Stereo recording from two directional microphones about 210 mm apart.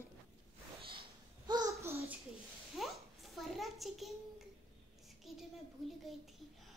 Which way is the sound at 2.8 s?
Centre (ahead or behind).